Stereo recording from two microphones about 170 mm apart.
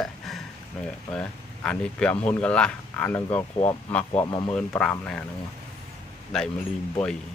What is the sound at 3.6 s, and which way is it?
Speech, 10° left (ahead or behind).